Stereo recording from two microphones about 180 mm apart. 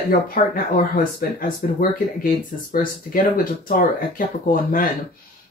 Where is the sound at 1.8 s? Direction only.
55° left (ahead or behind).